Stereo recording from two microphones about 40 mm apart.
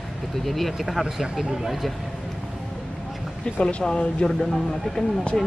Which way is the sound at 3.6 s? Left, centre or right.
Centre.